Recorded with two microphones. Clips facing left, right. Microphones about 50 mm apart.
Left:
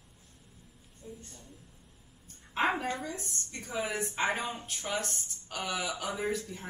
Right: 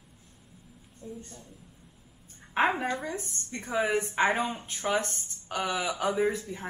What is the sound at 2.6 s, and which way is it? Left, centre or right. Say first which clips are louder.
Speech: right 4 dB; right.